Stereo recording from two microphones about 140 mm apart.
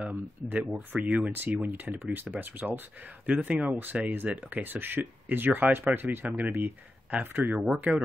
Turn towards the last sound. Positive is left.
turn(degrees=-5)  # may be behind; listen again after turning